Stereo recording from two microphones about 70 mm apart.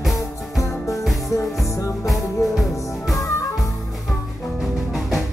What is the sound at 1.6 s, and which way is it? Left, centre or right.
Music, left.